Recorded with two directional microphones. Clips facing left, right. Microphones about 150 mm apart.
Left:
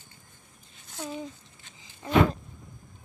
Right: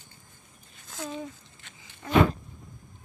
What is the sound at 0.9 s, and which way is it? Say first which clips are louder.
Speech: right 1 dB; 90° right.